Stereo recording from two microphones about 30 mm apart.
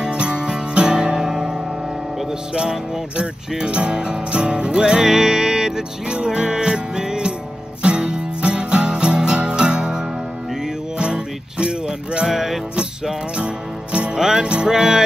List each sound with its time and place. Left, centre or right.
0.1 s music: right
3.2 s speech: right
7.8 s music: right
12.3 s music: centre
14.1 s music: centre